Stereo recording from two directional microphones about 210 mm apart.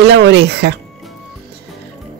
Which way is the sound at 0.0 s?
55° right (ahead or behind).